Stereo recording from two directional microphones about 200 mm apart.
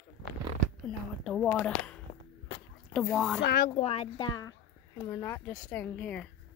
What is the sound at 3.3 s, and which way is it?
Speech, 55° left (ahead or behind).